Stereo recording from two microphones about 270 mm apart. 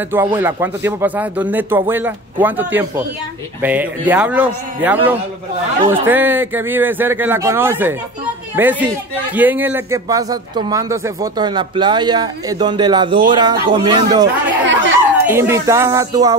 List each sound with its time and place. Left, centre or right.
0.1 s a man's voice: centre
14.7 s speech: right
15.2 s a man's voice: centre